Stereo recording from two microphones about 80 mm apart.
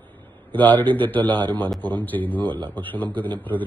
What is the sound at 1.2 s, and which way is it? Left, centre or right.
Speech, right.